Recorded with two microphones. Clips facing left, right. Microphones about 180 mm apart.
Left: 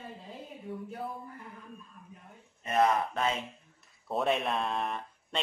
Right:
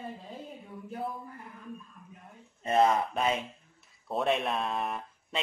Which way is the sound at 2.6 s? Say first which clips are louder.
Right 2 dB; 30° right (ahead or behind).